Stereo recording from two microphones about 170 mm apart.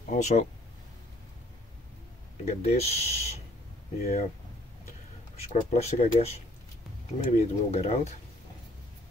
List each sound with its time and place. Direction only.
0.1 s speech: 40° left (ahead or behind)
2.4 s speech: 35° left (ahead or behind)
5.3 s speech: 40° left (ahead or behind)